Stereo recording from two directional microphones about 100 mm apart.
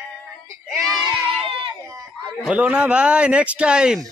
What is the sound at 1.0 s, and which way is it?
Crowd, 60° right (ahead or behind).